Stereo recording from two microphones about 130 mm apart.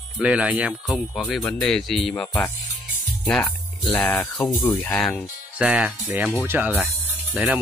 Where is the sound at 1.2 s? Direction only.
Centre (ahead or behind).